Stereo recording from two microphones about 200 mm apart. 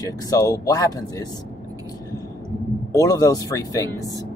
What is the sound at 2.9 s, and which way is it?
Speech, 15° left (ahead or behind).